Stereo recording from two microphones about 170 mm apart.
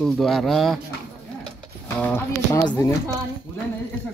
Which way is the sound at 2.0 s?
15° left (ahead or behind).